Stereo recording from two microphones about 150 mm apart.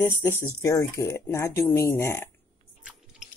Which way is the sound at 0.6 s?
20° left (ahead or behind).